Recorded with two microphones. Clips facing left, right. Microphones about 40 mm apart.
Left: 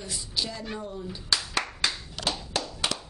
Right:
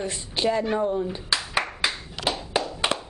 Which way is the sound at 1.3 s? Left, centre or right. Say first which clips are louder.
Left 1 dB; right.